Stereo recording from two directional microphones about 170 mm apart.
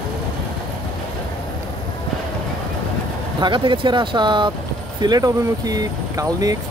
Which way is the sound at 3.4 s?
30° right (ahead or behind).